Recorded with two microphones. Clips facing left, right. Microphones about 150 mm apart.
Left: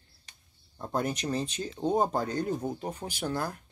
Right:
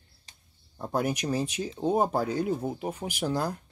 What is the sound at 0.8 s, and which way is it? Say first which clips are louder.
Speech: right 2 dB; 10° right (ahead or behind).